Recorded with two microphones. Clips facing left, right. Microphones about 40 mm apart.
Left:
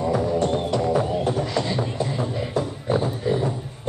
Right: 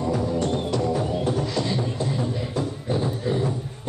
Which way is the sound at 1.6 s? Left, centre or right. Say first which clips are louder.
Left 1 dB; left.